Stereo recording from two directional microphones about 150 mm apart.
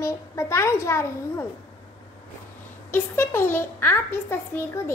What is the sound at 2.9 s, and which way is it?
A child's voice, 15° left (ahead or behind).